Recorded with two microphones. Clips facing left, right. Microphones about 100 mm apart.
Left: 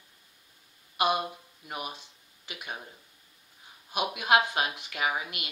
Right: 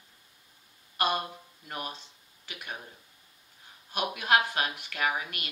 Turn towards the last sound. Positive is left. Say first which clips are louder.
# even
turn(degrees=15)  # may be behind; listen again after turning